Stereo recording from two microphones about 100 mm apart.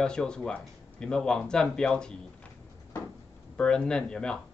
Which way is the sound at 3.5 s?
10° left (ahead or behind).